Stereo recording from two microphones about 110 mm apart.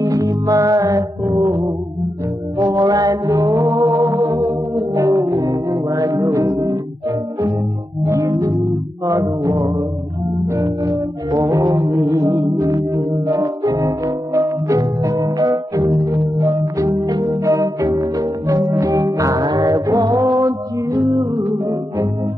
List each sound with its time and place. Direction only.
0.0 s music: 35° right (ahead or behind)
2.6 s music: 35° right (ahead or behind)
16.3 s organ: 30° right (ahead or behind)
21.1 s music: 30° right (ahead or behind)